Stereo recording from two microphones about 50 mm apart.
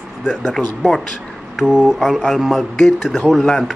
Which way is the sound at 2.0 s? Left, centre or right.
Centre.